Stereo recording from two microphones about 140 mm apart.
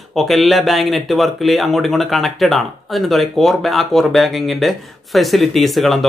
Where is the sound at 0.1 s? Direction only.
Centre (ahead or behind).